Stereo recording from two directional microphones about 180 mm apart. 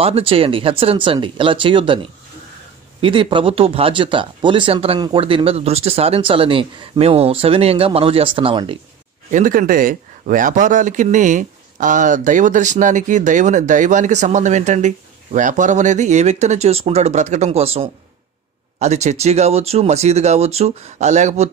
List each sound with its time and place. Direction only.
0.0 s speech: 30° right (ahead or behind)
3.0 s speech: 30° right (ahead or behind)
9.3 s speech: 50° right (ahead or behind)